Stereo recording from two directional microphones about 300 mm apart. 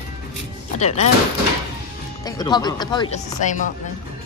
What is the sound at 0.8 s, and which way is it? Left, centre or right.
Speech, left.